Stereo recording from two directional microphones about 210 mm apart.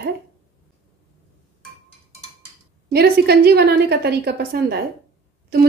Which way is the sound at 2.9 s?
50° right (ahead or behind).